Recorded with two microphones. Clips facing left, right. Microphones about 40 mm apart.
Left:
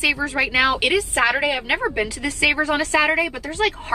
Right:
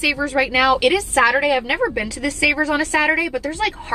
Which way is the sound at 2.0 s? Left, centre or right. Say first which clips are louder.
Right 1 dB; left.